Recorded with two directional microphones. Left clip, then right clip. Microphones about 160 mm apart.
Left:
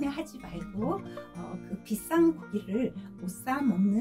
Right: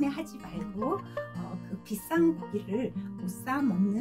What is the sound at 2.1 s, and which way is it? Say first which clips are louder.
Speech: left 2 dB; 30° right (ahead or behind).